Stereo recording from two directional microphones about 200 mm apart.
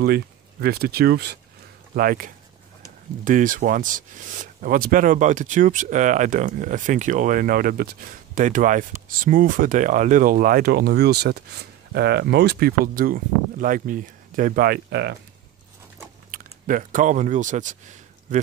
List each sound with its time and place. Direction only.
0.0 s speech: 50° right (ahead or behind)
16.3 s speech: 45° right (ahead or behind)